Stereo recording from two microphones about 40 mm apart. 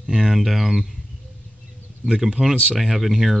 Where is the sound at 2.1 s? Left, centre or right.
Centre.